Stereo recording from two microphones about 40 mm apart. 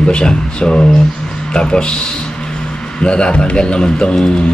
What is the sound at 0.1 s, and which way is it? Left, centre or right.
A man's voice, left.